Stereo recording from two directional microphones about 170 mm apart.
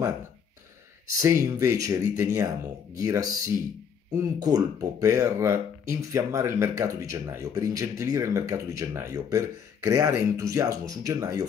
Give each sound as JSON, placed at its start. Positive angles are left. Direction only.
{"t": 1.2, "sound": "speech", "side_deg": -15}